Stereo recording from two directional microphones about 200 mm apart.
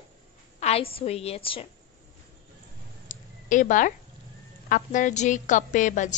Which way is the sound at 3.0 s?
40° left (ahead or behind).